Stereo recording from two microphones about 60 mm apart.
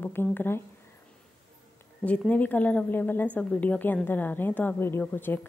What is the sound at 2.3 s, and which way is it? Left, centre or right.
Speech, left.